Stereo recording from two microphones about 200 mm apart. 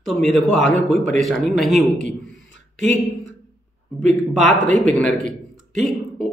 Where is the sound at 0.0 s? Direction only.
Centre (ahead or behind).